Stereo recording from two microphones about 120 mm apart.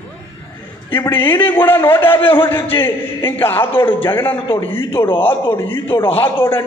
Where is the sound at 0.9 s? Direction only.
15° left (ahead or behind).